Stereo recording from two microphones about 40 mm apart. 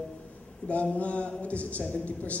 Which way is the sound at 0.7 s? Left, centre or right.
Left.